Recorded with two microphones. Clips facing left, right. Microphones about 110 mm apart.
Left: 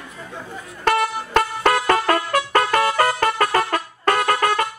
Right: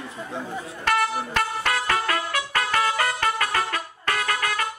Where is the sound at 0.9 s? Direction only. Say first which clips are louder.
Left 4 dB; 40° left (ahead or behind).